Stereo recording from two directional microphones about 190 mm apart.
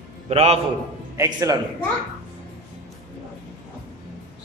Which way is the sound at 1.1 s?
15° right (ahead or behind).